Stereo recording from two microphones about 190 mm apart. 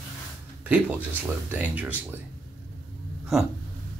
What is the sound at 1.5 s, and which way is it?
Speech, 10° right (ahead or behind).